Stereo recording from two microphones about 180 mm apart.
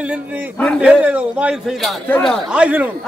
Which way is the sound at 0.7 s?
5° right (ahead or behind).